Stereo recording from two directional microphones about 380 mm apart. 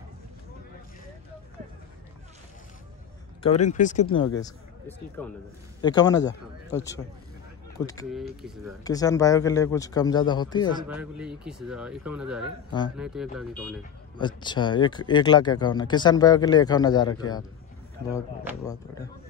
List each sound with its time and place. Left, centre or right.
3.4 s speech: centre
4.4 s speech: centre
7.8 s speech: centre
10.9 s speech: centre
18.5 s speech: centre